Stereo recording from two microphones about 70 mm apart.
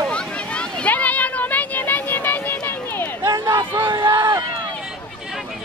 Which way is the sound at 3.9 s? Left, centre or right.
Right.